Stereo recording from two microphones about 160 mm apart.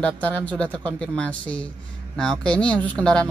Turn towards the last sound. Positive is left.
turn(degrees=5)  # may be behind; listen again after turning